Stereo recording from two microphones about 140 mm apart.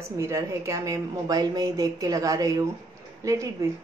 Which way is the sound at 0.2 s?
20° right (ahead or behind).